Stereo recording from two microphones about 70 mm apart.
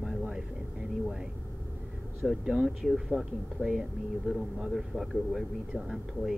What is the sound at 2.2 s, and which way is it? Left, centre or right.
A man's voice, centre.